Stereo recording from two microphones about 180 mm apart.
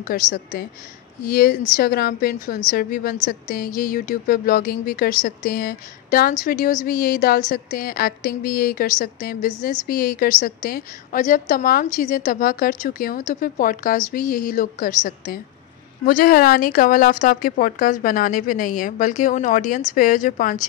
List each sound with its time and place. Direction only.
0.0 s a woman's voice: 50° left (ahead or behind)